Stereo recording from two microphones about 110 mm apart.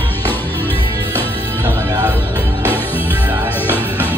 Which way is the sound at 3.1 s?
15° right (ahead or behind).